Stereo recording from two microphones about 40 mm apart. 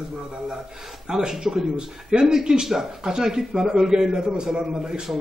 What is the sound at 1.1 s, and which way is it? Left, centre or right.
A man's voice, centre.